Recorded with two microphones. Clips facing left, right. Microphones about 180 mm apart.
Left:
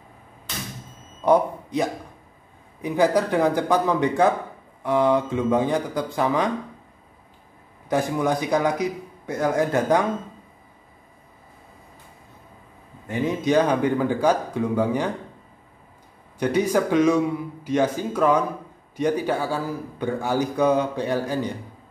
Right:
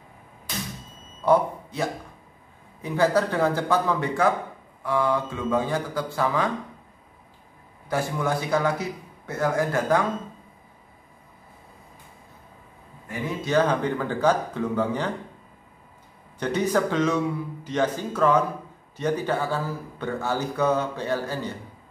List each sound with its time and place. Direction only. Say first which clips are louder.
1.2 s a man's voice: left 2 dB; 15° left (ahead or behind)
7.9 s speech: left 4 dB; 15° left (ahead or behind)
13.1 s speech: left 4 dB; 20° left (ahead or behind)
16.3 s speech: left 3 dB; 10° left (ahead or behind)